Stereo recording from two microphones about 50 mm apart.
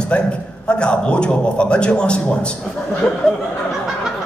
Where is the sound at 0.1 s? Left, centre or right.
Left.